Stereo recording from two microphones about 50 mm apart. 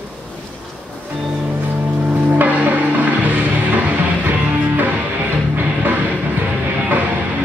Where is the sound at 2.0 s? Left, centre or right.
Right.